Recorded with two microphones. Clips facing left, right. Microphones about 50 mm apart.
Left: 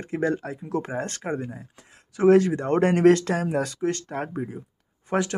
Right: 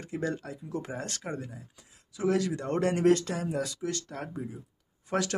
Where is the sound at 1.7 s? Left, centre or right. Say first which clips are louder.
Left 11 dB; left.